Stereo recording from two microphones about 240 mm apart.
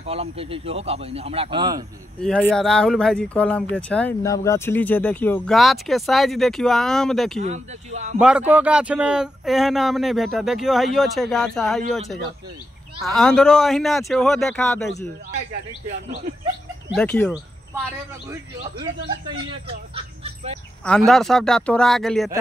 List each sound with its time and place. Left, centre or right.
0.0 s speech: right
2.2 s speech: centre
7.4 s speech: right
8.2 s speech: centre
13.0 s speech: centre
16.9 s speech: centre
20.0 s bird: right
20.8 s speech: centre